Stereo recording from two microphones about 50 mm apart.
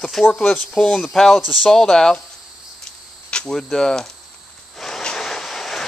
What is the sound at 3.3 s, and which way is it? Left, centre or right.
Speech, centre.